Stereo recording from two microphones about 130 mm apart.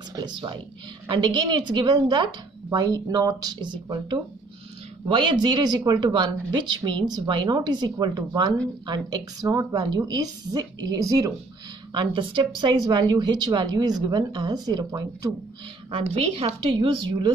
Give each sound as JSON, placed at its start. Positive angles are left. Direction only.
{"t": 0.1, "sound": "speech", "side_deg": -35}
{"t": 11.9, "sound": "speech", "side_deg": -40}
{"t": 16.2, "sound": "a woman's voice", "side_deg": -55}